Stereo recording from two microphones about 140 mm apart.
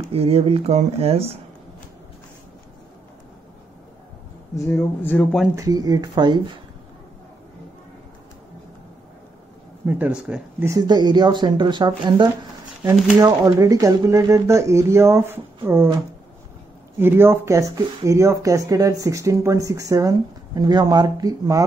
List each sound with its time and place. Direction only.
0.1 s speech: 45° right (ahead or behind)
4.6 s speech: 15° left (ahead or behind)
5.6 s speech: 25° right (ahead or behind)
9.8 s speech: 10° right (ahead or behind)
10.7 s speech: 30° right (ahead or behind)
17.0 s speech: 15° right (ahead or behind)